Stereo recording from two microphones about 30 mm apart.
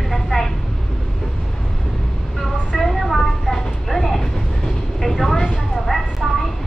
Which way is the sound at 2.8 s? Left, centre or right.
Centre.